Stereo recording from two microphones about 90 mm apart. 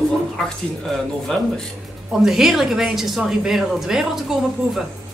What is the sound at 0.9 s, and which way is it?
A woman's voice, 5° left (ahead or behind).